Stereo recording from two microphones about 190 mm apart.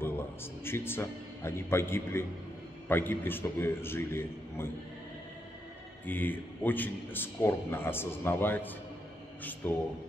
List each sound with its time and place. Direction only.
0.0 s a man's voice: 10° left (ahead or behind)
6.0 s a man's voice: 10° left (ahead or behind)